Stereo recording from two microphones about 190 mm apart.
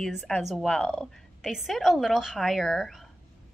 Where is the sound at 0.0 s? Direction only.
5° left (ahead or behind).